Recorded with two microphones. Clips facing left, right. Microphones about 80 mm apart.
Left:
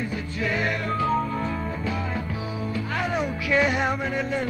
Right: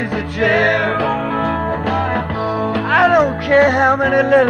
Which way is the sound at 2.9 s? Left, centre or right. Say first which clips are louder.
Right 16 dB; right.